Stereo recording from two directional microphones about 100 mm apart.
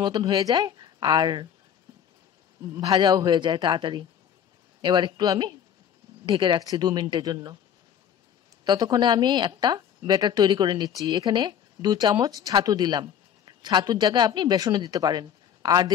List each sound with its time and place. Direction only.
0.0 s a woman's voice: 45° right (ahead or behind)
2.9 s a woman's voice: 50° right (ahead or behind)
6.2 s a woman's voice: 55° right (ahead or behind)
8.6 s a woman's voice: 45° right (ahead or behind)